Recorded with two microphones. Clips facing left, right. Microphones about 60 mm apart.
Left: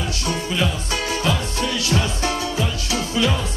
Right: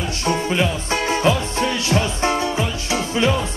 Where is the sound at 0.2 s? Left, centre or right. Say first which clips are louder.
Right 4 dB; right.